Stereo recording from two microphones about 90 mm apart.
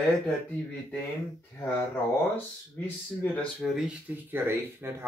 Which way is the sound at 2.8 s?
20° left (ahead or behind).